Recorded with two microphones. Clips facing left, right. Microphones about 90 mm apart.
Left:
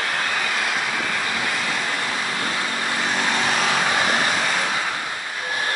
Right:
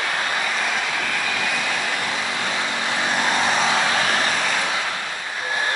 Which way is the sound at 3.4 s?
Centre (ahead or behind).